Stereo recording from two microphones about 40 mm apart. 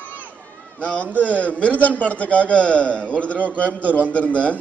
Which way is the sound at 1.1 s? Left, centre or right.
Left.